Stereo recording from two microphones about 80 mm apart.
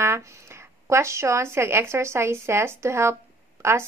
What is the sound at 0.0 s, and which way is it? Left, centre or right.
A woman's voice, right.